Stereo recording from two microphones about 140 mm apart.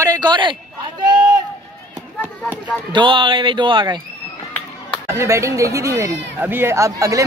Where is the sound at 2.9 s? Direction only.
35° right (ahead or behind).